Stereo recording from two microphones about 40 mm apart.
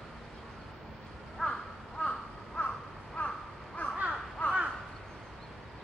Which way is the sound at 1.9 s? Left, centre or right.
Left.